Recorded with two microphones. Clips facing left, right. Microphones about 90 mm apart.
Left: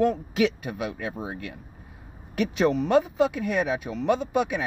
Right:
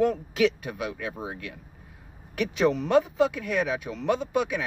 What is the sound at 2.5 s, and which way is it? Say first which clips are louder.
Speech: even; 10° left (ahead or behind).